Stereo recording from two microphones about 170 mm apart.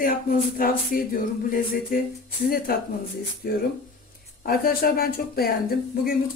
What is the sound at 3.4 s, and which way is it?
Speech, 60° left (ahead or behind).